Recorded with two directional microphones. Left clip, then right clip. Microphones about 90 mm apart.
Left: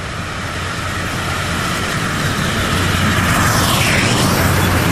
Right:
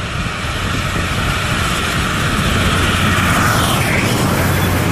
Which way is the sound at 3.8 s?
45° left (ahead or behind).